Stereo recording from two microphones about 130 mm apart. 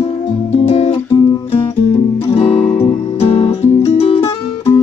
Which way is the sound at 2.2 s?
45° left (ahead or behind).